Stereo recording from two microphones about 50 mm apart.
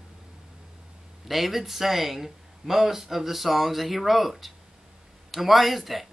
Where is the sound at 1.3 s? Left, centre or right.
Centre.